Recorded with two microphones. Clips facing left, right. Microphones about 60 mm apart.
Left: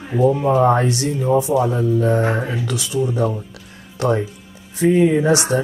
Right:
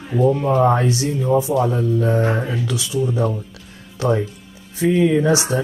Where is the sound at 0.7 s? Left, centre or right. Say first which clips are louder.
Left 1 dB; left.